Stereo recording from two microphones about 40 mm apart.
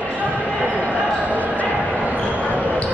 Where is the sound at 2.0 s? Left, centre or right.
Right.